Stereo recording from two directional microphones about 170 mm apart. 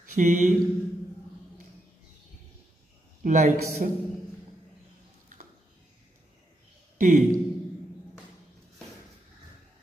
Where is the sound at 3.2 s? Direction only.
45° right (ahead or behind).